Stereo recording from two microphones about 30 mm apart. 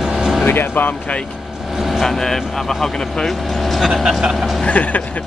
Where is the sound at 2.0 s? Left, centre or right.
Centre.